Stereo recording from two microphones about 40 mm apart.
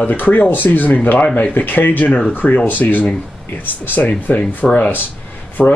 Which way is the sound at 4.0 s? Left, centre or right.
Left.